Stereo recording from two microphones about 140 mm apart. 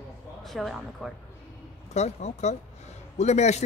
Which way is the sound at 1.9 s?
55° left (ahead or behind).